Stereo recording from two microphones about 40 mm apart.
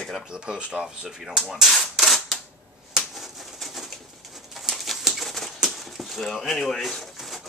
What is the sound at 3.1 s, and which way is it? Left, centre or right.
Bird, centre.